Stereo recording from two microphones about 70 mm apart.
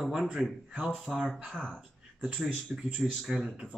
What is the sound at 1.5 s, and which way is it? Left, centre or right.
Speech, centre.